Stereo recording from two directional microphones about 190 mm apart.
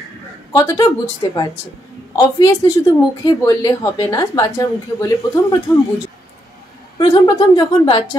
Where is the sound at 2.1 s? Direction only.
20° left (ahead or behind).